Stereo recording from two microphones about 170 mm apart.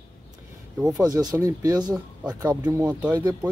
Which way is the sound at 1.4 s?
20° right (ahead or behind).